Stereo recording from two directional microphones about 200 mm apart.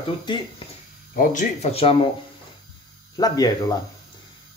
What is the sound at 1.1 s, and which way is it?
Speech, 40° left (ahead or behind).